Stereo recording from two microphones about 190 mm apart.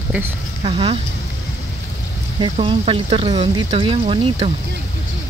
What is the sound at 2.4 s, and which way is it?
Speech, 30° right (ahead or behind).